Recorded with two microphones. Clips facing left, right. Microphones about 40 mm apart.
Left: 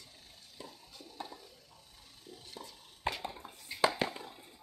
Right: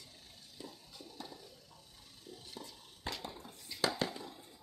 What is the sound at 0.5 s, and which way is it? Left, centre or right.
Stir, left.